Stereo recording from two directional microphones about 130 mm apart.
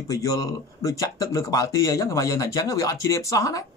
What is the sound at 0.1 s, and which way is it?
Speech, 25° left (ahead or behind).